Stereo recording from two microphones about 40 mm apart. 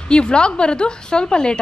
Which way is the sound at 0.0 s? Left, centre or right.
Left.